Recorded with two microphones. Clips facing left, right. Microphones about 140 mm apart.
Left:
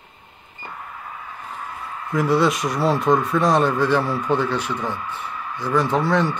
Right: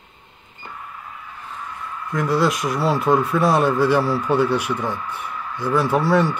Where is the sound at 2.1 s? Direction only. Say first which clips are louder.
Left 1 dB; centre (ahead or behind).